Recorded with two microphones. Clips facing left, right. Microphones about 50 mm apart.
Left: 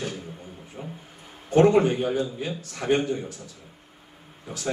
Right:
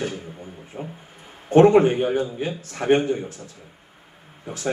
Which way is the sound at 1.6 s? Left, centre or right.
Right.